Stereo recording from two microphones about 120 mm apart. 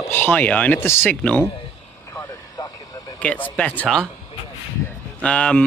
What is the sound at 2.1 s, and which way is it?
Vehicle, 30° left (ahead or behind).